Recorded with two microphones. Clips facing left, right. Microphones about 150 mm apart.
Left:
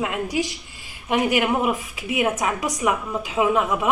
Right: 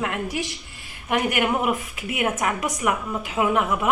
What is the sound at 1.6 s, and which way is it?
A woman's voice, 20° left (ahead or behind).